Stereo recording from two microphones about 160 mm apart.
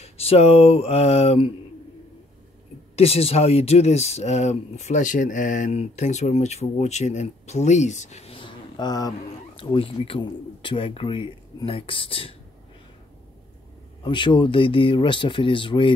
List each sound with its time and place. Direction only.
0.0 s speech: 40° left (ahead or behind)
3.0 s speech: 40° left (ahead or behind)
14.0 s speech: 30° left (ahead or behind)